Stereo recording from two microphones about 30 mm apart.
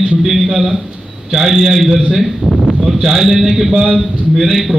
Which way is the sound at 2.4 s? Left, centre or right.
Left.